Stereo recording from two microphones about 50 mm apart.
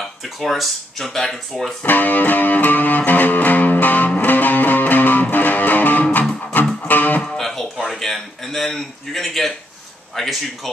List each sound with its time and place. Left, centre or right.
0.0 s speech: centre
1.8 s music: left
7.2 s music: centre
7.6 s a sound: centre
10.1 s speech: centre